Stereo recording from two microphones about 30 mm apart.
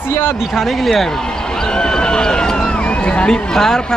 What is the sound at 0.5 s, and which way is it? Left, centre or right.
Speech, centre.